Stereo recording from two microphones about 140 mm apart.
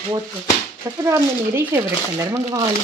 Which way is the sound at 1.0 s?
15° right (ahead or behind).